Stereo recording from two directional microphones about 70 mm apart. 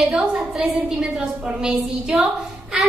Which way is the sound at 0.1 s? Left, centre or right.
Centre.